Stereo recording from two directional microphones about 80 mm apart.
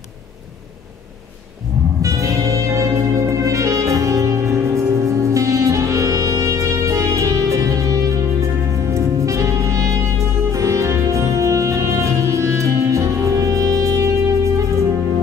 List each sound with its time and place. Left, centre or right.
2.0 s music: right